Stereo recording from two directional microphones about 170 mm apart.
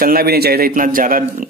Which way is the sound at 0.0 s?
60° right (ahead or behind).